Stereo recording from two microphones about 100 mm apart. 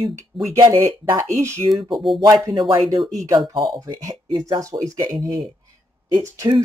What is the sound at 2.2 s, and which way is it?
Speech, 35° right (ahead or behind).